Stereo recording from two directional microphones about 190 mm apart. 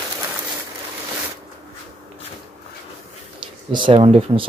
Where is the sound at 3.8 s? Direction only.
30° right (ahead or behind).